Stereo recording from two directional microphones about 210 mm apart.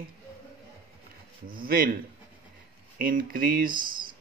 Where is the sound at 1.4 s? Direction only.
45° right (ahead or behind).